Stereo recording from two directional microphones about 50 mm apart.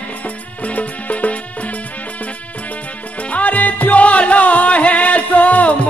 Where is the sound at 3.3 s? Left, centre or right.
Left.